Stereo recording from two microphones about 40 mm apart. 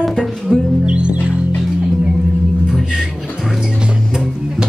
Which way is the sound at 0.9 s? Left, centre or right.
Right.